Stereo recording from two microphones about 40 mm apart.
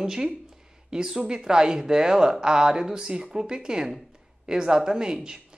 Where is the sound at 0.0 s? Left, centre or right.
Centre.